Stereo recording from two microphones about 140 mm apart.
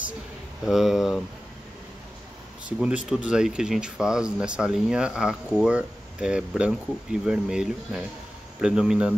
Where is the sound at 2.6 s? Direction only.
5° right (ahead or behind).